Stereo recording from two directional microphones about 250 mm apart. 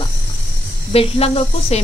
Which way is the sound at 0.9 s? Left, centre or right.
Left.